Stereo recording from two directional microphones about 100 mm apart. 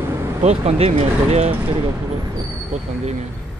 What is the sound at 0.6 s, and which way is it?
Speech, 90° right.